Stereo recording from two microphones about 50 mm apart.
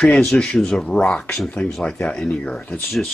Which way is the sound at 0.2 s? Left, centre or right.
Centre.